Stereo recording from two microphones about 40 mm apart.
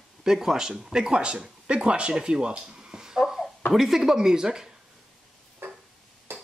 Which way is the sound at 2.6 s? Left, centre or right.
Centre.